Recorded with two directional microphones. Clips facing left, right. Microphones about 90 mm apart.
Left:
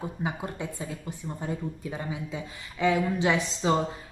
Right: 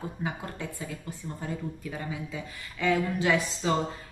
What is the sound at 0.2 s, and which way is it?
Speech, 20° left (ahead or behind).